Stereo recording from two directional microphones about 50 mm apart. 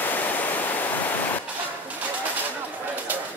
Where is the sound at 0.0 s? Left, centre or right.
Left.